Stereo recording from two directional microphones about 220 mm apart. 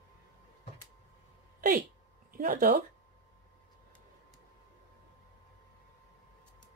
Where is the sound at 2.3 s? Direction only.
40° right (ahead or behind).